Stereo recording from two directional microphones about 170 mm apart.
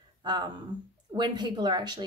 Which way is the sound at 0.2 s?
25° right (ahead or behind).